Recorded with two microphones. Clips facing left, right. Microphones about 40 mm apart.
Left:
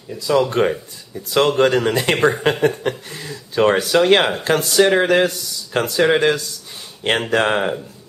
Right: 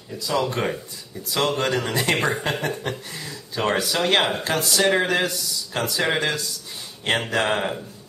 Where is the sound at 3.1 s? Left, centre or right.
Centre.